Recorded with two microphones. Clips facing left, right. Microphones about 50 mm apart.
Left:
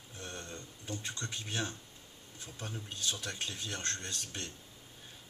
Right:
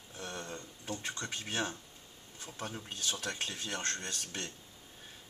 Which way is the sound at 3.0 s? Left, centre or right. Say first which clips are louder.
Right 1 dB; right.